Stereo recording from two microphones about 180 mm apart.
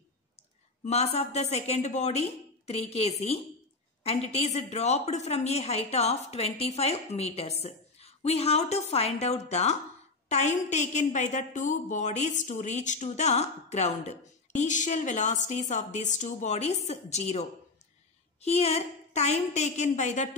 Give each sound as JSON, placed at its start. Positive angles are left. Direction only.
{"t": 0.8, "sound": "a woman's voice", "side_deg": 35}